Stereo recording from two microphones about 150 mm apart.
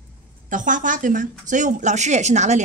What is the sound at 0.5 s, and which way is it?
Speech, 60° right (ahead or behind).